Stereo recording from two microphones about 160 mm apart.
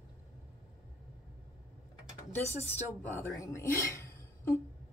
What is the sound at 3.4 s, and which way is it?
Speech, 20° left (ahead or behind).